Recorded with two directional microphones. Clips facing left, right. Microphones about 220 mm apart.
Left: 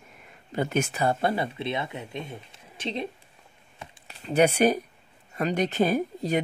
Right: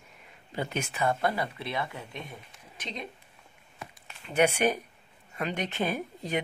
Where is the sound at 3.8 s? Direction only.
35° left (ahead or behind).